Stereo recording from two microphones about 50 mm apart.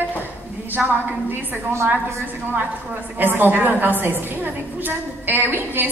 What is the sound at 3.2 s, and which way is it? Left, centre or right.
A woman's voice, right.